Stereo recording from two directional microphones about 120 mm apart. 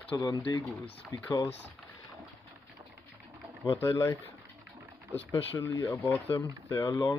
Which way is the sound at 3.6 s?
20° left (ahead or behind).